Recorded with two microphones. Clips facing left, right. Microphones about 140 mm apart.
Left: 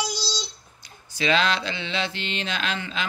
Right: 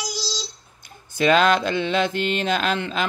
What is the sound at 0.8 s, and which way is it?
Mantra, 50° right (ahead or behind).